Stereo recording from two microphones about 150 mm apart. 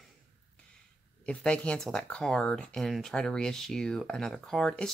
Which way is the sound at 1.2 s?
5° left (ahead or behind).